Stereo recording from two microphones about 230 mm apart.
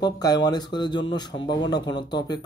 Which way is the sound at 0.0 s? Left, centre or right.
Centre.